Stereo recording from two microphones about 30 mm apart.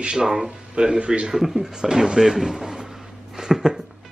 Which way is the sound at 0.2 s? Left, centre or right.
Centre.